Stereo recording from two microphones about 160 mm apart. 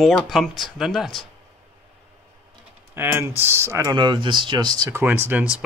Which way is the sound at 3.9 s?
30° right (ahead or behind).